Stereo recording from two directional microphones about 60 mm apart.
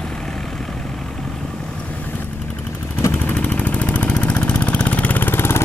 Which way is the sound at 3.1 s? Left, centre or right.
Left.